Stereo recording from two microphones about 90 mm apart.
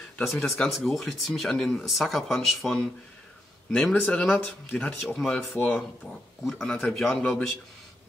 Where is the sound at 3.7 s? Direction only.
5° left (ahead or behind).